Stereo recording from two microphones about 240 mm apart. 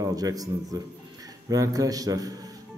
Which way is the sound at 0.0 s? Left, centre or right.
Centre.